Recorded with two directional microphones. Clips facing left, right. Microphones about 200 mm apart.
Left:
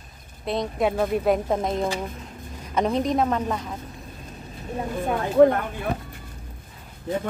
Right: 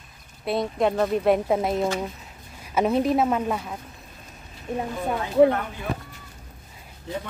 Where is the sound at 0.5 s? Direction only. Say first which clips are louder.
Right 1 dB; 5° right (ahead or behind).